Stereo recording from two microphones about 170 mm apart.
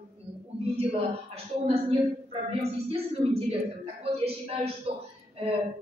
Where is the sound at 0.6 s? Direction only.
35° right (ahead or behind).